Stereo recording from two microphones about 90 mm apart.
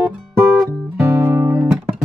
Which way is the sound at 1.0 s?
25° right (ahead or behind).